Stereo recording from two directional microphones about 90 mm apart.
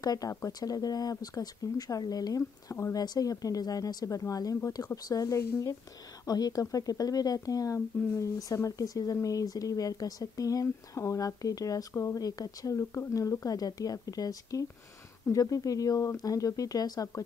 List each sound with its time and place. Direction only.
0.0 s speech: 45° left (ahead or behind)